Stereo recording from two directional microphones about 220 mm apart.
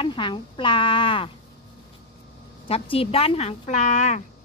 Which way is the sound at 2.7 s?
25° left (ahead or behind).